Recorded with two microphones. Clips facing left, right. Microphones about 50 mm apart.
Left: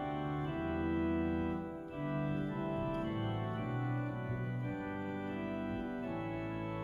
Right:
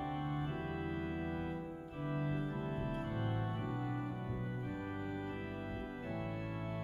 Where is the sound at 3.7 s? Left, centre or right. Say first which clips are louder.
Left 1 dB; left.